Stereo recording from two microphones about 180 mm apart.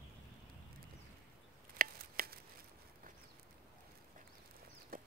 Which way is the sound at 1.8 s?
55° right (ahead or behind).